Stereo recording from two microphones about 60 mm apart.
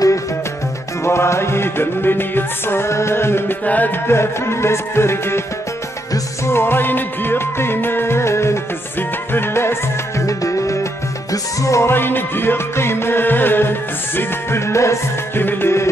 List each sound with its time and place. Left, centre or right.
1.0 s music: left
3.6 s music: left
4.1 s music: left
6.4 s music: left
10.2 s music: left
11.9 s music: left
15.3 s music: left